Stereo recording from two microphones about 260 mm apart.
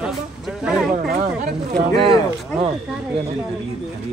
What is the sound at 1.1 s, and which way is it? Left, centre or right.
Speech, right.